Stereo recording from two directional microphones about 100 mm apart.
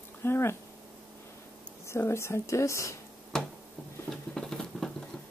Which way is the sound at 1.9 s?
25° left (ahead or behind).